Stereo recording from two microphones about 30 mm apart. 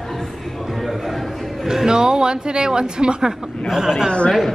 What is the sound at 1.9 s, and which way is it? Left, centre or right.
A woman's voice, right.